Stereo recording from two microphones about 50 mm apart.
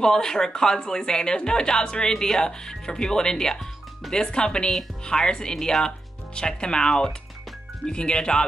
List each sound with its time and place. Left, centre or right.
0.0 s speech: centre